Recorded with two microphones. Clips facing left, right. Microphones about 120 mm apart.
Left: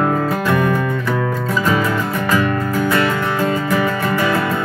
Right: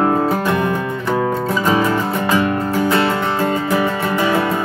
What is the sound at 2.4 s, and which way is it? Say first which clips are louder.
Music: right 1 dB; 25° right (ahead or behind).